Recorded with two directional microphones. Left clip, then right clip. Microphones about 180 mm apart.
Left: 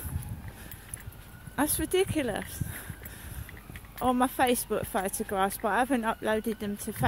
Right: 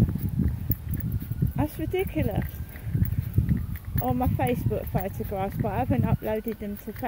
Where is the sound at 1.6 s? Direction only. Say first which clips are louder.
Left 2 dB; 30° left (ahead or behind).